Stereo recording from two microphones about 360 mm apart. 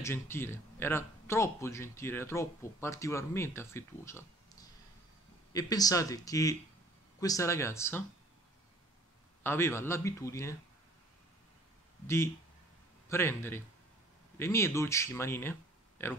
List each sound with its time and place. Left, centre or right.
0.0 s speech: centre
9.4 s speech: centre
13.1 s speech: centre